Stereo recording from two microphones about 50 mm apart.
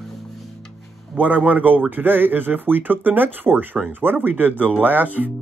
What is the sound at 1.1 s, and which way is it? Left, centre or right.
Speech, right.